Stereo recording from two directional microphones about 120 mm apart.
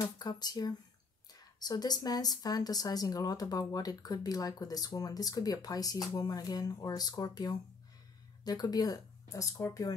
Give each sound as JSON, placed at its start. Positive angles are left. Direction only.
{"t": 0.0, "sound": "a woman's voice", "side_deg": 35}